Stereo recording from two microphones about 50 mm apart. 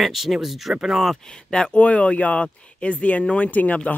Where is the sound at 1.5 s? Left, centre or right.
Centre.